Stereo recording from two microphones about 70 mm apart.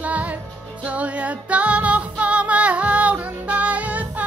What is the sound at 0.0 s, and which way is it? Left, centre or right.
Music, right.